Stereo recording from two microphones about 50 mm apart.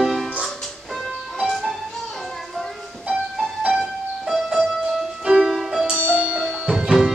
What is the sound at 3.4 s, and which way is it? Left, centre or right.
Music, centre.